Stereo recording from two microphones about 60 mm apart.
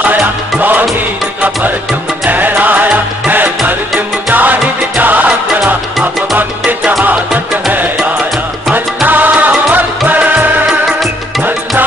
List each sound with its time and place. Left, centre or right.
0.6 s music: right
2.2 s music: right
8.7 s music: right